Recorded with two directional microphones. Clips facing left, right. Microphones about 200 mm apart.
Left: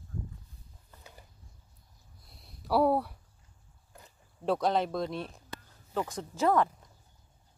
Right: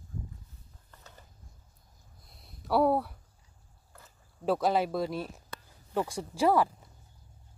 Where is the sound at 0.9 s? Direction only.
10° left (ahead or behind).